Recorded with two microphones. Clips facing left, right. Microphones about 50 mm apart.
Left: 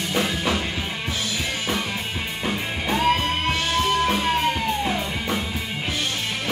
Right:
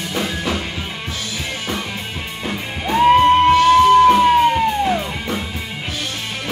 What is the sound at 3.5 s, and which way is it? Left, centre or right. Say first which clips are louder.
Music: right 10 dB; centre.